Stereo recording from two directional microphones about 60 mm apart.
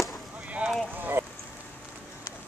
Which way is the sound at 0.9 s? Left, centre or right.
Right.